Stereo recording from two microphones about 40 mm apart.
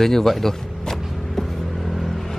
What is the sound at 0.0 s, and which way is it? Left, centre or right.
Speech, centre.